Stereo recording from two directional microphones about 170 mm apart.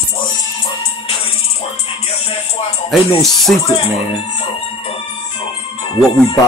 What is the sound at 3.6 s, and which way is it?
Music, 35° left (ahead or behind).